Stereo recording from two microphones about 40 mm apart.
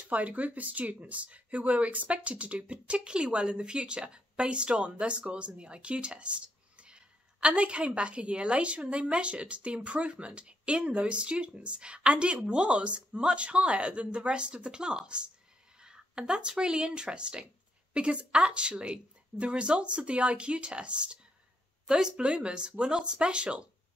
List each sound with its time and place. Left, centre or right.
0.0 s speech: right